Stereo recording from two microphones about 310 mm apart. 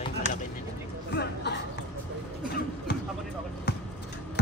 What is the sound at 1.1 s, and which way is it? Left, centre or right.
Chatter, left.